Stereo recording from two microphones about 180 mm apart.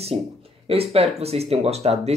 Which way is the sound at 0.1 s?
35° right (ahead or behind).